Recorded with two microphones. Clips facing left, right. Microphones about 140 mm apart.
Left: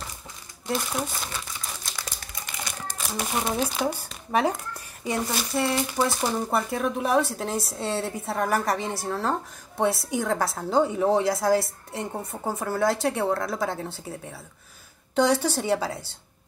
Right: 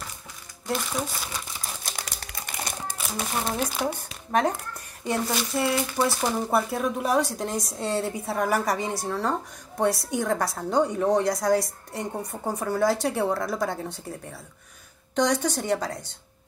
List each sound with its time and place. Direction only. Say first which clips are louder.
0.7 s speech: even; centre (ahead or behind)
1.9 s crumpling: right 1 dB; 50° right (ahead or behind)
3.0 s crumpling: left 2 dB; centre (ahead or behind)
3.5 s a woman's voice: left 1 dB; 5° left (ahead or behind)